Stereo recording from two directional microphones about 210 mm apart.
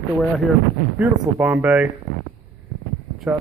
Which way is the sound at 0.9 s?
10° right (ahead or behind).